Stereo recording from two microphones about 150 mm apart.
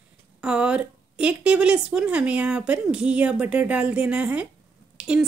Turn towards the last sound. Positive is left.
turn(degrees=-5)  # may be behind; listen again after turning